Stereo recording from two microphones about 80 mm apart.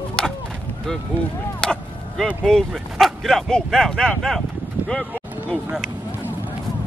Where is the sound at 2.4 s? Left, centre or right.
Centre.